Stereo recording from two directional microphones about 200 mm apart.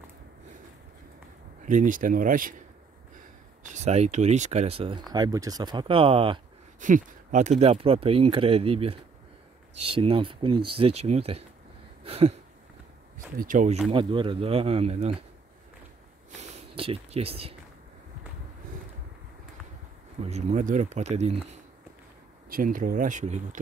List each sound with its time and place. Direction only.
1.7 s speech: 40° right (ahead or behind)
3.6 s speech: 35° right (ahead or behind)
6.8 s speech: 40° right (ahead or behind)
12.0 s a sound: 30° right (ahead or behind)
13.4 s speech: 40° right (ahead or behind)
13.9 s speech: 25° right (ahead or behind)
16.3 s speech: 30° right (ahead or behind)
20.2 s speech: 30° right (ahead or behind)
22.5 s speech: 45° right (ahead or behind)